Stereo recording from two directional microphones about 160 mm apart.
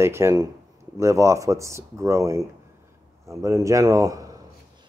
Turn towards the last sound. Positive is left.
turn(degrees=-20)  # may be behind; listen again after turning